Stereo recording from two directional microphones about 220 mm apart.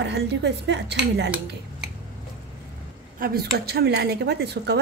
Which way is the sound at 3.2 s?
45° right (ahead or behind).